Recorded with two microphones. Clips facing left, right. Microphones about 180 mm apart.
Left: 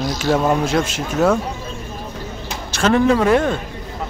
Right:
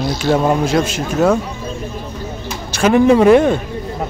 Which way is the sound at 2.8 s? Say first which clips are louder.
Right 5 dB; 15° right (ahead or behind).